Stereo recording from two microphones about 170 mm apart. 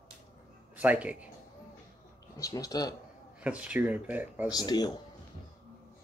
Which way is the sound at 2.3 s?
20° left (ahead or behind).